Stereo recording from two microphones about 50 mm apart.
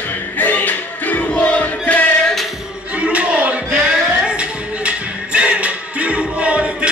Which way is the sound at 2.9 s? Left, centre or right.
Right.